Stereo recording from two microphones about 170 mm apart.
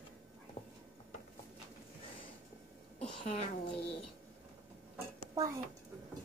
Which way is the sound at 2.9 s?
35° left (ahead or behind).